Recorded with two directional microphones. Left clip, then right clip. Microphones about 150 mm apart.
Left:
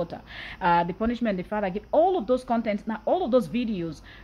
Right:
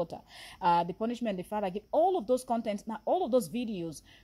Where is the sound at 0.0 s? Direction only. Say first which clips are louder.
Left 4 dB; 40° right (ahead or behind).